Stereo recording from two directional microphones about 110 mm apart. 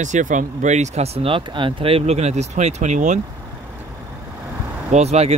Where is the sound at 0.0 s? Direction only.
90° right.